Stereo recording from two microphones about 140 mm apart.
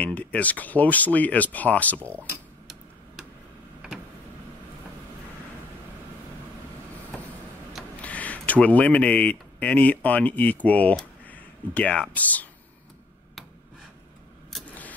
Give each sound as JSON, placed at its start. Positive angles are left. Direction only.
{"t": 0.0, "sound": "speech", "side_deg": 10}
{"t": 2.0, "sound": "speech", "side_deg": -15}
{"t": 8.0, "sound": "speech", "side_deg": 10}